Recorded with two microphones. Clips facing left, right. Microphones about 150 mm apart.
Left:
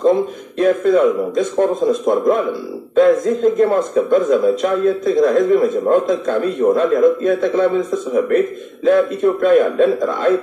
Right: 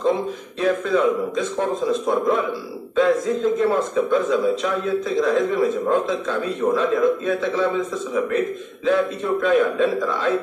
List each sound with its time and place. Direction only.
0.6 s a man's voice: 50° left (ahead or behind)